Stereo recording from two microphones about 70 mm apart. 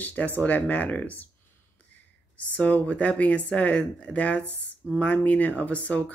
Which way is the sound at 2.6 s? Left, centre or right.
Centre.